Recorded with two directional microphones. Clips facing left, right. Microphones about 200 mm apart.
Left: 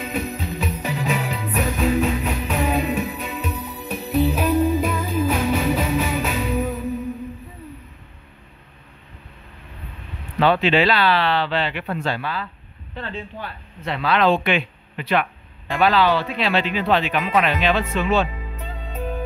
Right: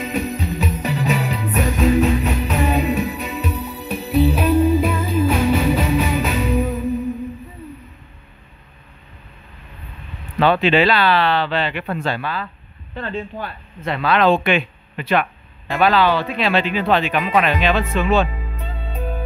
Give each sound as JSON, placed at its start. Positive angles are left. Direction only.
{"t": 0.0, "sound": "music", "side_deg": -5}
{"t": 10.4, "sound": "speech", "side_deg": -55}
{"t": 18.9, "sound": "music", "side_deg": -10}